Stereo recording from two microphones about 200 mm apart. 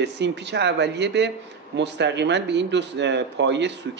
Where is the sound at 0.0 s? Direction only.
60° right (ahead or behind).